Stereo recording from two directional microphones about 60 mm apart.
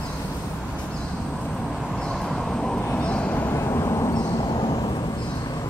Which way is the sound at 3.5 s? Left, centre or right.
Left.